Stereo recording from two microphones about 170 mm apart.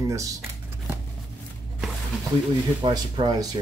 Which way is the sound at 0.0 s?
20° right (ahead or behind).